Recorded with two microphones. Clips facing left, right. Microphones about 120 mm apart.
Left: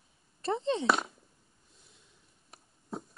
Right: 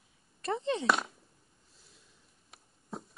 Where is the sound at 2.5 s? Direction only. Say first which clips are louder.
Left 3 dB; centre (ahead or behind).